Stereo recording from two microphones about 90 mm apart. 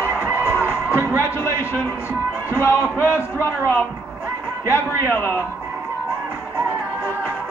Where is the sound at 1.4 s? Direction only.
25° left (ahead or behind).